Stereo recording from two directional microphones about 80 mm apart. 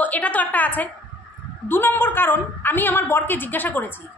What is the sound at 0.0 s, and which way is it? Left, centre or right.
A woman's voice, centre.